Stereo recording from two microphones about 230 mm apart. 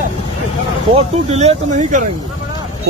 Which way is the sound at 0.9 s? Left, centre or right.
Right.